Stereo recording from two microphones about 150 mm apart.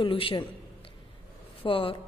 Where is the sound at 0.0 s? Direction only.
35° left (ahead or behind).